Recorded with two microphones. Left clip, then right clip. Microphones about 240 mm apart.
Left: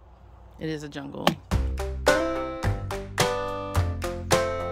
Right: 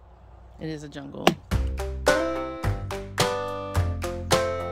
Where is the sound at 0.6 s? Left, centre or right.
Centre.